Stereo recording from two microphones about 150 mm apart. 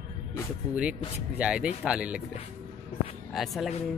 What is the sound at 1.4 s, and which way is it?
Speech, 5° right (ahead or behind).